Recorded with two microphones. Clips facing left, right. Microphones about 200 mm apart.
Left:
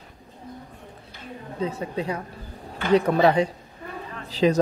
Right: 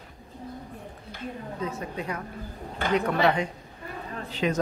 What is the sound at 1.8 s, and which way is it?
Speech, 30° left (ahead or behind).